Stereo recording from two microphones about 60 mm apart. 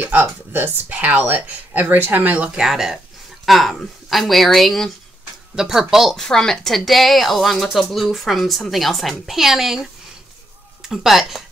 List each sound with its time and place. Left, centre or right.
0.0 s speech: right
2.3 s speech: centre
2.6 s speech: centre
6.1 s speech: centre